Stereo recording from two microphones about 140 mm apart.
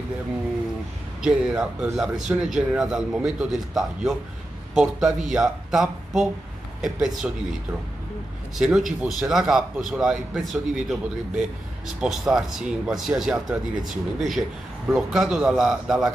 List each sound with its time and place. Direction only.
1.2 s speech: 5° right (ahead or behind)
8.5 s speech: 5° right (ahead or behind)